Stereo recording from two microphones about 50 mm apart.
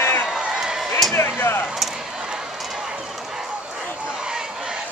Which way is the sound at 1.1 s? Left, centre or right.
Left.